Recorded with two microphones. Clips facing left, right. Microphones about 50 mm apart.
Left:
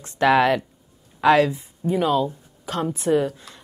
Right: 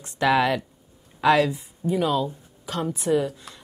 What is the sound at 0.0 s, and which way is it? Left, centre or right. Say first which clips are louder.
Speech: left 3 dB; left.